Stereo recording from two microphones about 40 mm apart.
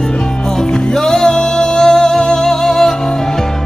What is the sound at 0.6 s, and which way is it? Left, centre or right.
Music, centre.